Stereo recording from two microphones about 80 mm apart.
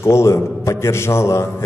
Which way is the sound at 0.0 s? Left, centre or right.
Left.